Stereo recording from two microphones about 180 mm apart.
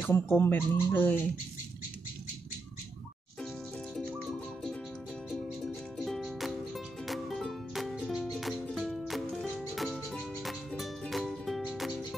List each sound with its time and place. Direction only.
0.0 s speech: 10° left (ahead or behind)
4.1 s music: centre (ahead or behind)